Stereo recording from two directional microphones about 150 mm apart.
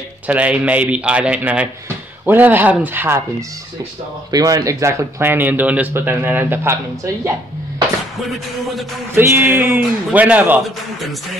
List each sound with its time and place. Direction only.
0.3 s speech: 10° right (ahead or behind)
9.1 s speech: 15° right (ahead or behind)
10.6 s speech: centre (ahead or behind)